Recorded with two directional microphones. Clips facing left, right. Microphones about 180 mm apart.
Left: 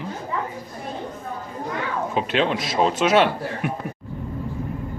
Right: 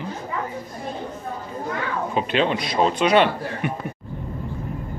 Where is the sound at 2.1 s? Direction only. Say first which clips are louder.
Right 1 dB; centre (ahead or behind).